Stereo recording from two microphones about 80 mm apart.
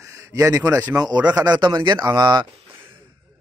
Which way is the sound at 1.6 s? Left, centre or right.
Right.